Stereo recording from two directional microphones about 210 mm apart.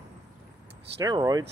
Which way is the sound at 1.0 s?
20° right (ahead or behind).